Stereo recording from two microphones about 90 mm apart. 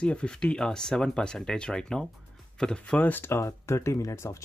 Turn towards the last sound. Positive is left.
turn(degrees=30)  # may be behind; listen again after turning